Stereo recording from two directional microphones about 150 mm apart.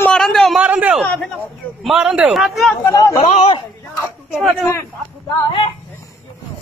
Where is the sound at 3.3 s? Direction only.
45° left (ahead or behind).